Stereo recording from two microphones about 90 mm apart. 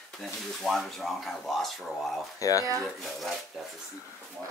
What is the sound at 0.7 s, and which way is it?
Speech, centre (ahead or behind).